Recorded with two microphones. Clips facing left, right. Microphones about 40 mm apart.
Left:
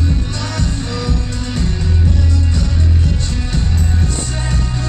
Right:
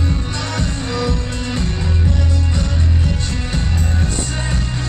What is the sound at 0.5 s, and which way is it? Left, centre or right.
Music, centre.